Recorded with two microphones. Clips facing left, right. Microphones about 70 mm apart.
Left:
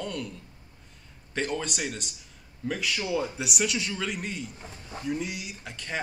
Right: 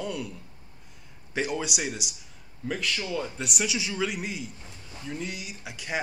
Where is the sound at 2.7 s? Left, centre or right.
Centre.